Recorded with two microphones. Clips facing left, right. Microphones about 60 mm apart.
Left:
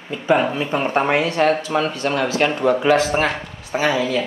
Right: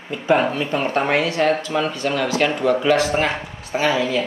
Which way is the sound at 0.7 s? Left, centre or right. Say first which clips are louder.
Left 2 dB; centre.